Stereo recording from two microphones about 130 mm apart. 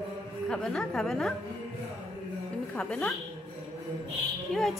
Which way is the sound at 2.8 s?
10° left (ahead or behind).